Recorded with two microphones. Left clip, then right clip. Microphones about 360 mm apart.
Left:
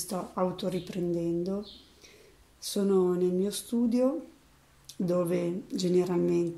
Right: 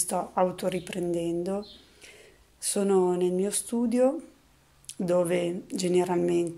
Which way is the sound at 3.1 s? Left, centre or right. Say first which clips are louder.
Right 2 dB; centre.